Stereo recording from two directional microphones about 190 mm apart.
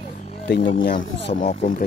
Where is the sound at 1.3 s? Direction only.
30° left (ahead or behind).